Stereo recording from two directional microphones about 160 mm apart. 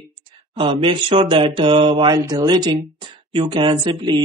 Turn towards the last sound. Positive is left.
turn(degrees=-25)  # may be behind; listen again after turning